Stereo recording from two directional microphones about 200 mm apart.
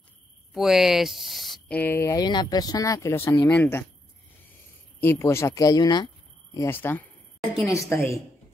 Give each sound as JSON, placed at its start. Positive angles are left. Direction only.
{"t": 0.6, "sound": "speech", "side_deg": 0}
{"t": 5.0, "sound": "speech", "side_deg": 15}
{"t": 7.5, "sound": "a woman's voice", "side_deg": 0}
{"t": 7.9, "sound": "speech", "side_deg": 15}